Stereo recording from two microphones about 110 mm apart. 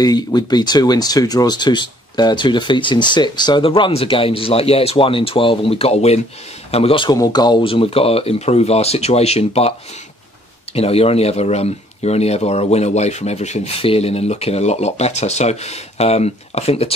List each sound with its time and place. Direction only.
0.0 s speech: 40° left (ahead or behind); by 6.2 s 70° left (ahead or behind)
6.7 s speech: 60° left (ahead or behind)
7.1 s speech: 40° left (ahead or behind); by 16.9 s 65° left (ahead or behind)